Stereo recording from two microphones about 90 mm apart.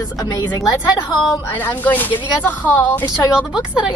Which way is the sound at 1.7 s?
20° left (ahead or behind).